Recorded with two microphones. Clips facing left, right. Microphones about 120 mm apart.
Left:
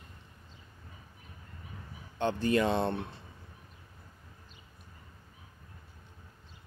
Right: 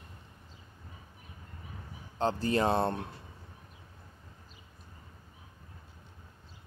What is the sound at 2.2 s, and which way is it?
Speech, 35° right (ahead or behind).